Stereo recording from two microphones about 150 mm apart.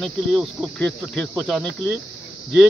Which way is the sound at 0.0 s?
5° left (ahead or behind).